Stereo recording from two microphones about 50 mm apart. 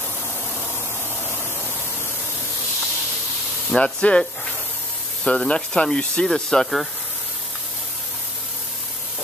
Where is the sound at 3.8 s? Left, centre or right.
Left.